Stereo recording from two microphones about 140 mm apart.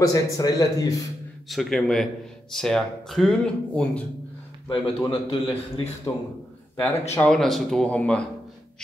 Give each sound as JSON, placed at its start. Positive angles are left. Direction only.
{"t": 0.0, "sound": "a man's voice", "side_deg": 25}
{"t": 1.5, "sound": "speech", "side_deg": 0}
{"t": 4.6, "sound": "a man's voice", "side_deg": 40}
{"t": 6.8, "sound": "speech", "side_deg": 10}